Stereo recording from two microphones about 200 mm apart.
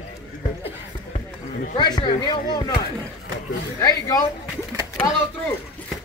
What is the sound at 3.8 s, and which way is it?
Speech, 15° left (ahead or behind).